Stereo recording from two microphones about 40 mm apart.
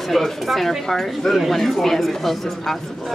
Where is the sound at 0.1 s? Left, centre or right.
Centre.